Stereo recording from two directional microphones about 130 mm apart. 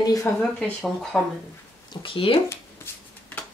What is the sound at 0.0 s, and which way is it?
Speech, 25° left (ahead or behind).